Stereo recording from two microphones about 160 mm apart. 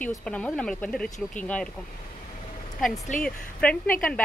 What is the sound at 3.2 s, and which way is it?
Speech, 5° left (ahead or behind).